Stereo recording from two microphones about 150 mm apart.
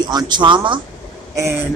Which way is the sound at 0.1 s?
30° right (ahead or behind).